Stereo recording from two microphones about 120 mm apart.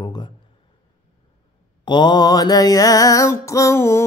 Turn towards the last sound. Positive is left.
turn(degrees=20)  # may be behind; listen again after turning